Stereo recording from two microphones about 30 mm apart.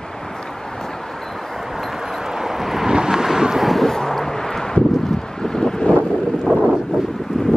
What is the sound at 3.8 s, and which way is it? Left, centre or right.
Vehicle, centre.